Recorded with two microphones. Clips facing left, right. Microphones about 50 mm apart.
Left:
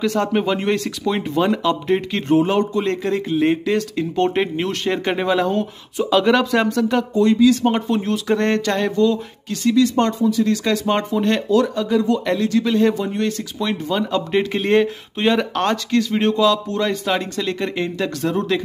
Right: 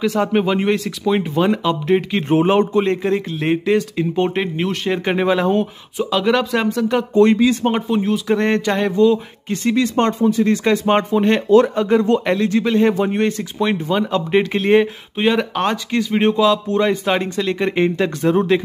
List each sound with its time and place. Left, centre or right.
0.0 s speech: centre
2.2 s speech: right
4.4 s speech: centre
5.9 s speech: centre
7.2 s speech: right
7.6 s speech: centre
11.4 s speech: right
12.6 s speech: centre
12.9 s speech: right
17.4 s speech: centre
17.6 s speech: right